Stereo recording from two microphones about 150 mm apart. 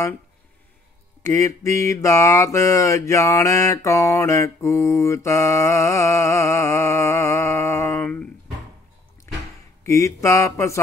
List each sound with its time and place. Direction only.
1.3 s mantra: 20° left (ahead or behind)
9.8 s mantra: 20° left (ahead or behind)